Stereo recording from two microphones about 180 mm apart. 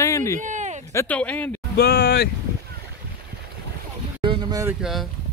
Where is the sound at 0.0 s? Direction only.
15° left (ahead or behind).